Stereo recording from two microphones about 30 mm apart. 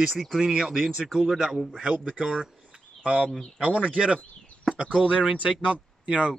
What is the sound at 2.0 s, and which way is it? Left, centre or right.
Speech, right.